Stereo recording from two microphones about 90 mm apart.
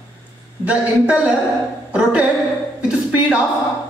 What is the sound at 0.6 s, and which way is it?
A man's voice, 15° right (ahead or behind).